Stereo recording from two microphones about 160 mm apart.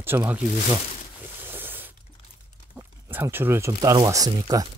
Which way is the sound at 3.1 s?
15° right (ahead or behind).